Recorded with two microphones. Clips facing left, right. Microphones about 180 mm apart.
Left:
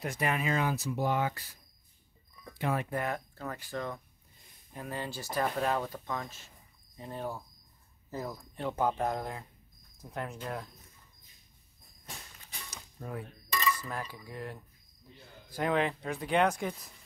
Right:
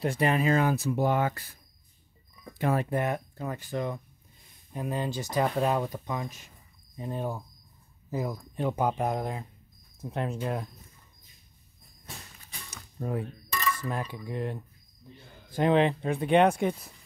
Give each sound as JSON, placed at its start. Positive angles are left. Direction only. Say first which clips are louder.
{"t": 0.0, "sound": "speech", "louder": "right 6 dB", "side_deg": -30}
{"t": 2.6, "sound": "speech", "louder": "right 5 dB", "side_deg": -40}
{"t": 2.9, "sound": "speech", "louder": "right 5 dB", "side_deg": -20}
{"t": 13.0, "sound": "speech", "louder": "right 8 dB", "side_deg": -25}